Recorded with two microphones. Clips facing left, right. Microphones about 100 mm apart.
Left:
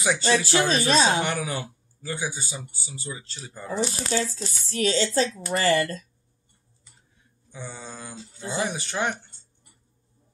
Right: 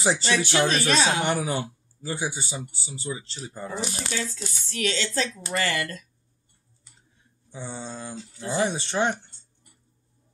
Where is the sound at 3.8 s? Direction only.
35° left (ahead or behind).